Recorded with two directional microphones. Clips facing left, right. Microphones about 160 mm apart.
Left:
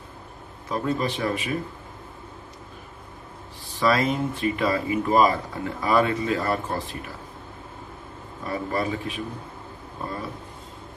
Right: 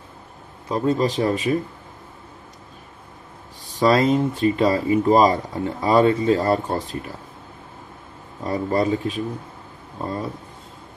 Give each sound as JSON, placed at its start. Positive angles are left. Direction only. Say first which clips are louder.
{"t": 0.7, "sound": "speech", "louder": "right 5 dB", "side_deg": -30}
{"t": 3.7, "sound": "speech", "louder": "right 5 dB", "side_deg": -35}
{"t": 8.5, "sound": "speech", "louder": "right 6 dB", "side_deg": -35}